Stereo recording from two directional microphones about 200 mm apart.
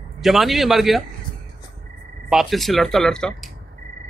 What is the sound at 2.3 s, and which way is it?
Speech, centre (ahead or behind).